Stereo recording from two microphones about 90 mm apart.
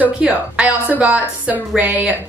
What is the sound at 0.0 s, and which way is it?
Speech, 15° right (ahead or behind).